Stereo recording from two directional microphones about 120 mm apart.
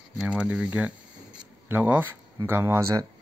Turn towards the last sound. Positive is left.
turn(degrees=-25)  # may be behind; listen again after turning